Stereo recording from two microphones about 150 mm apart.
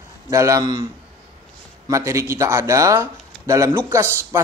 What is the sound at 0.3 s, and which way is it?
Speech, 20° right (ahead or behind).